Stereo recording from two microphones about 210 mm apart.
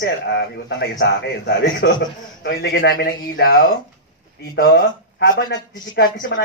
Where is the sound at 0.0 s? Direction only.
55° left (ahead or behind).